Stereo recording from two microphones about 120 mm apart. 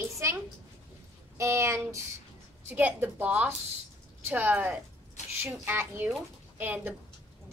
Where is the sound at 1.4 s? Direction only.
25° right (ahead or behind).